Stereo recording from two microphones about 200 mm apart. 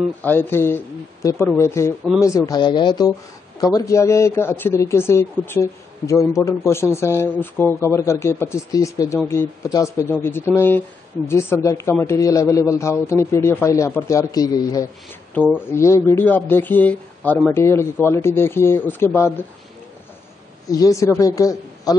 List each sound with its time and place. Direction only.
0.2 s speech: 10° left (ahead or behind)
20.7 s speech: 15° left (ahead or behind)